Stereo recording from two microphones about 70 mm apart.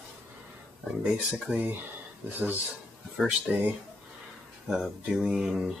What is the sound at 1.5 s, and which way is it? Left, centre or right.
Speech, right.